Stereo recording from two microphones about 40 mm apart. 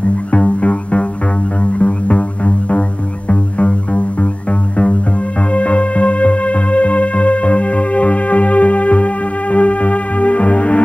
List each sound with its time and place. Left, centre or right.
0.3 s music: left